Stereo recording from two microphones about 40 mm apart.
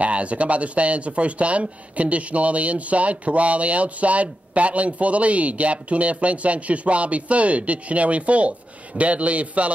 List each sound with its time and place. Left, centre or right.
0.0 s speech: right